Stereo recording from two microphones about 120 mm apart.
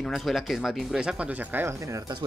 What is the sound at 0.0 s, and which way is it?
Speech, centre (ahead or behind).